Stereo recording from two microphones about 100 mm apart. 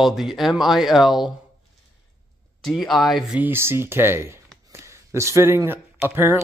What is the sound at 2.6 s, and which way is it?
Speech, 5° left (ahead or behind).